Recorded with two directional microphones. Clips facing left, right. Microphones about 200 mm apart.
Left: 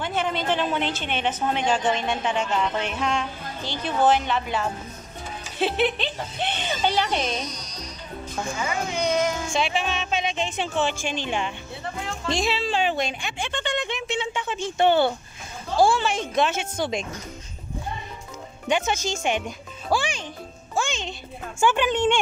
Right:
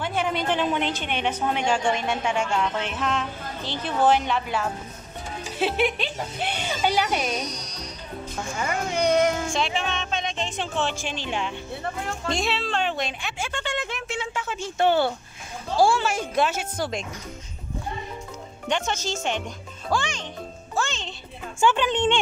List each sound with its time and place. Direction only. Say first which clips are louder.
0.0 s a woman's voice: even; 10° right (ahead or behind)
8.6 s speech: right 3 dB; 60° right (ahead or behind)
9.5 s speech: left 1 dB; 5° left (ahead or behind)
18.7 s speech: left 3 dB; 10° left (ahead or behind)
19.9 s music: left 2 dB; 10° left (ahead or behind)
21.5 s speech: even; 10° left (ahead or behind)